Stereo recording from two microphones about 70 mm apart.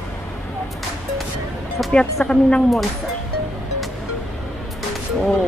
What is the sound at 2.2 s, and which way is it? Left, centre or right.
Speech, left.